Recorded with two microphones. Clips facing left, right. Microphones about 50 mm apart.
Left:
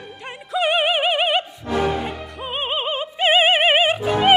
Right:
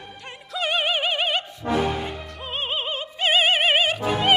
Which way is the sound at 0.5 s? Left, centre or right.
Centre.